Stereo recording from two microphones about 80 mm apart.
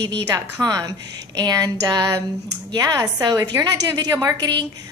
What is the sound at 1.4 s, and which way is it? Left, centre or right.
A woman's voice, right.